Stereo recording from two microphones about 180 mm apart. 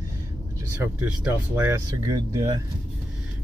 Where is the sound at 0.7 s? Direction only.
10° right (ahead or behind).